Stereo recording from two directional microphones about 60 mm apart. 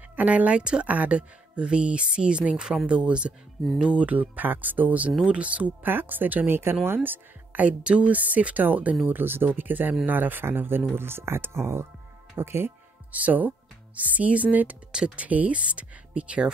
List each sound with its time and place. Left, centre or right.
0.1 s speech: right
5.9 s speech: right
13.1 s speech: right
14.9 s speech: centre